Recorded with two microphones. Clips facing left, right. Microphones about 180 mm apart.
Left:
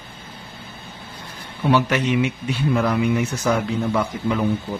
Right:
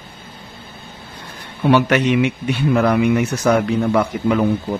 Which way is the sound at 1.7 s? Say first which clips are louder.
Right 4 dB; 70° right (ahead or behind).